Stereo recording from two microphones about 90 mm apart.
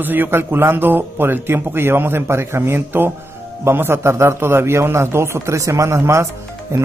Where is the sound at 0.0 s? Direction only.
20° right (ahead or behind).